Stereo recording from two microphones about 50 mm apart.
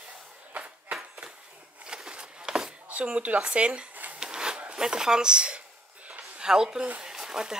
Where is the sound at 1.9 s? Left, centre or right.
Centre.